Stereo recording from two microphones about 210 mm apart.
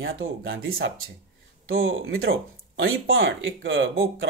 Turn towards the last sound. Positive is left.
turn(degrees=-65)  # may be behind; listen again after turning